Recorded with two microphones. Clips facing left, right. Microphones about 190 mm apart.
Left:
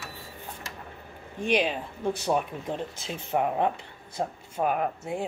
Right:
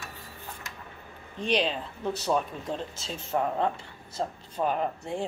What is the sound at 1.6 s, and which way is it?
Speech, 10° left (ahead or behind).